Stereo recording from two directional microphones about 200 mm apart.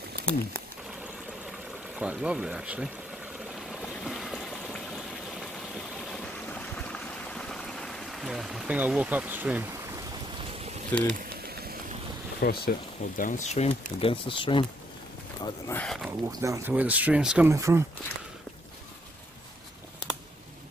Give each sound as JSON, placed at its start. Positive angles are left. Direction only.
{"t": 0.2, "sound": "speech", "side_deg": 5}
{"t": 2.0, "sound": "speech", "side_deg": -5}
{"t": 3.8, "sound": "a sound", "side_deg": 0}
{"t": 5.9, "sound": "stream", "side_deg": 5}
{"t": 10.9, "sound": "speech", "side_deg": 5}
{"t": 12.4, "sound": "speech", "side_deg": 50}
{"t": 13.2, "sound": "speech", "side_deg": 40}
{"t": 15.7, "sound": "speech", "side_deg": 5}
{"t": 16.3, "sound": "speech", "side_deg": -15}